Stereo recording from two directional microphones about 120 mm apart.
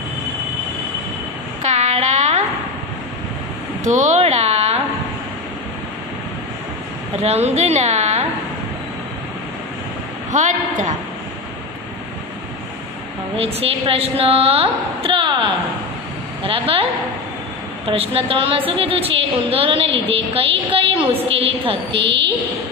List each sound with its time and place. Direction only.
1.6 s a sound: 70° right (ahead or behind)
3.8 s a sound: 80° right; by 4.8 s 60° right (ahead or behind)
7.2 s a woman's voice: 65° right (ahead or behind)
10.3 s a woman's voice: 85° right
13.4 s a woman's voice: 55° right (ahead or behind)
16.4 s a woman's voice: 50° right (ahead or behind)
17.8 s a woman's voice: 55° right (ahead or behind)